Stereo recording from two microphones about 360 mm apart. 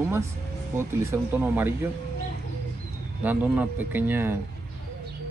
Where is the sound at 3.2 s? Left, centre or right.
Centre.